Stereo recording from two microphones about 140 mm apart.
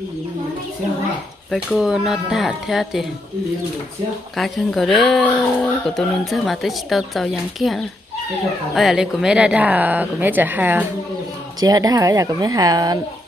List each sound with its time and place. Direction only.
1.8 s speech: 5° right (ahead or behind)
4.4 s speech: centre (ahead or behind)
11.6 s a woman's voice: 25° right (ahead or behind)